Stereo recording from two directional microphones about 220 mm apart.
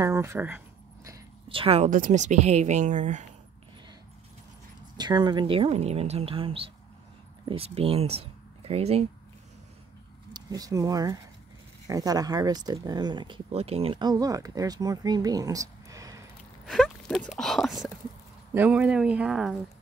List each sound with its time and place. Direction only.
0.0 s a woman's voice: 10° right (ahead or behind); by 3.3 s 35° right (ahead or behind)
4.9 s speech: 20° right (ahead or behind)
10.3 s speech: 15° right (ahead or behind)
16.6 s speech: centre (ahead or behind)